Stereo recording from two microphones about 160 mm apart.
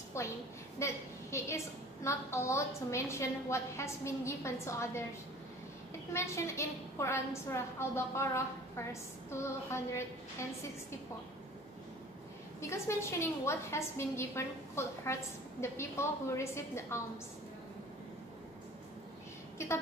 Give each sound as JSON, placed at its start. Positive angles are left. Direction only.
{"t": 0.2, "sound": "a sound", "side_deg": 15}
{"t": 0.7, "sound": "a woman's voice", "side_deg": 15}
{"t": 6.1, "sound": "a woman's voice", "side_deg": 15}
{"t": 12.5, "sound": "a woman's voice", "side_deg": 15}
{"t": 19.6, "sound": "a woman's voice", "side_deg": 15}